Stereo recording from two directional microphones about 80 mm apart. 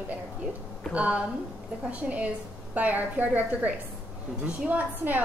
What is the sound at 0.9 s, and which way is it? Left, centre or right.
A woman's voice, centre.